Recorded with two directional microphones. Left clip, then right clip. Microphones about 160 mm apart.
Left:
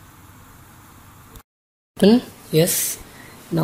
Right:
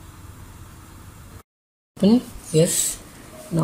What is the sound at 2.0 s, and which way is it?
Speech, 15° left (ahead or behind).